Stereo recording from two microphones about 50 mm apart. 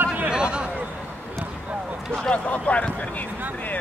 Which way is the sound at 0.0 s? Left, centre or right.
Right.